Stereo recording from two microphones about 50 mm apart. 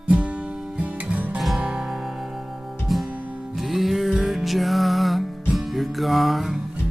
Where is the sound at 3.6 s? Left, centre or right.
Centre.